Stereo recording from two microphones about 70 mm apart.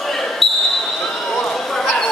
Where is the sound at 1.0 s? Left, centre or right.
Centre.